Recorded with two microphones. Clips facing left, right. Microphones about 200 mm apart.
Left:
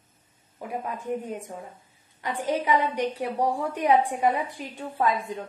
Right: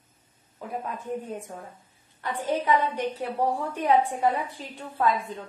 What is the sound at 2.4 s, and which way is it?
A woman's voice, 10° left (ahead or behind).